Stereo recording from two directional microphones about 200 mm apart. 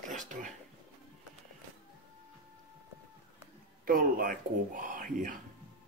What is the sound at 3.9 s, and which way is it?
Speech, 45° right (ahead or behind).